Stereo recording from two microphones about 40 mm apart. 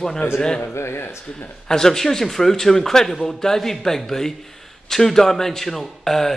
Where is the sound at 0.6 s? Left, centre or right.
Left.